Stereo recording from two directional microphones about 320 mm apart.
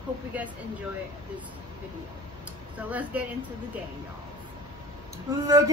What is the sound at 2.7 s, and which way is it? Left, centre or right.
Speech, centre.